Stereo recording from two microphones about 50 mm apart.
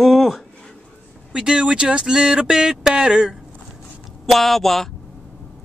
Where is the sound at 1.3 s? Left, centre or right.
Centre.